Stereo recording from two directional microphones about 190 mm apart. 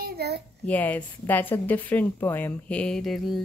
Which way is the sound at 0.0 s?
55° right (ahead or behind).